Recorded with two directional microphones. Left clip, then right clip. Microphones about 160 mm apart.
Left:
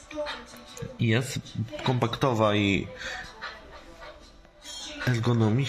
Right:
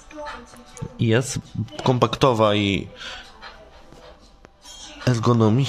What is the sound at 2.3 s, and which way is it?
Speech, 30° right (ahead or behind).